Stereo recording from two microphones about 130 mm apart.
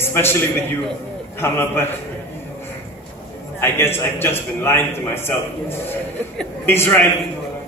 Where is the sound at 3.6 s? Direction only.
20° left (ahead or behind).